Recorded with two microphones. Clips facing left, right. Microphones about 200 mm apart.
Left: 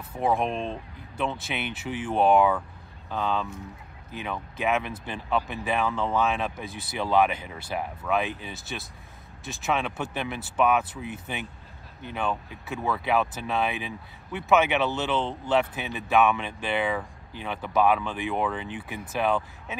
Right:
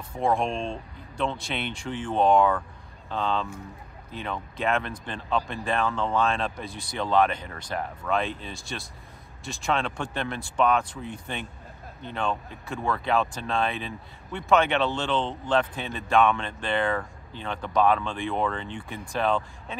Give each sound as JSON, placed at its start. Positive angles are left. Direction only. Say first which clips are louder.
{"t": 0.1, "sound": "speech", "louder": "even", "side_deg": 5}